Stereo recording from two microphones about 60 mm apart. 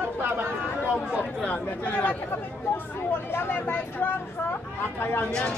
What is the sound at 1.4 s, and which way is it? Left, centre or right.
Speech, left.